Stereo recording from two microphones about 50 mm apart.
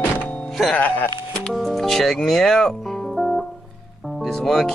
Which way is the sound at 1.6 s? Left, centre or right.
Centre.